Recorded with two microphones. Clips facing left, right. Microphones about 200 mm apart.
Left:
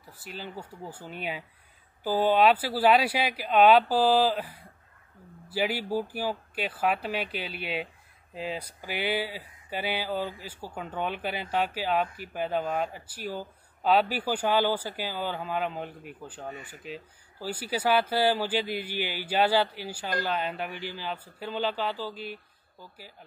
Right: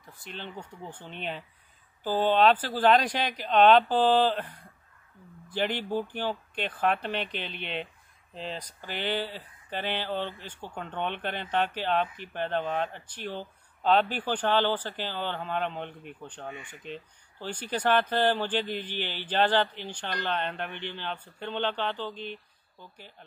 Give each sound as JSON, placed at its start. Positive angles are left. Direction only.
{"t": 0.0, "sound": "speech", "side_deg": 5}
{"t": 16.4, "sound": "speech", "side_deg": 40}
{"t": 16.7, "sound": "speech", "side_deg": 5}